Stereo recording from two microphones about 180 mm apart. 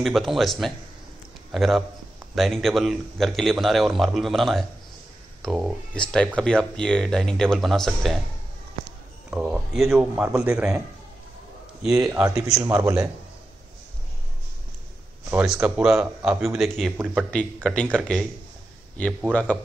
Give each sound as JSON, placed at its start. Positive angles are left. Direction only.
{"t": 0.0, "sound": "a man's voice", "side_deg": 0}
{"t": 9.3, "sound": "speech", "side_deg": -5}
{"t": 11.8, "sound": "speech", "side_deg": -5}
{"t": 12.1, "sound": "a man's voice", "side_deg": -15}
{"t": 15.3, "sound": "speech", "side_deg": -5}